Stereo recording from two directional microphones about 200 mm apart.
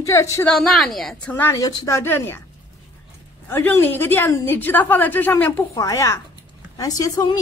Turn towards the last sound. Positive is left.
turn(degrees=20)  # may be behind; listen again after turning